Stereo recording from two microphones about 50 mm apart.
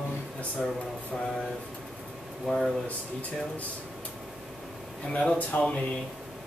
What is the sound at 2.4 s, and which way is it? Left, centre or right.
Speech, centre.